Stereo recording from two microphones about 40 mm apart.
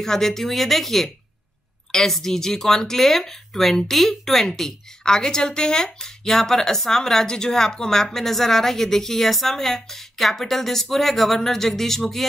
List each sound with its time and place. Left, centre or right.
0.0 s speech: centre